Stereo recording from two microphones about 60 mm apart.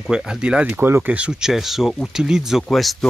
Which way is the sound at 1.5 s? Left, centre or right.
Centre.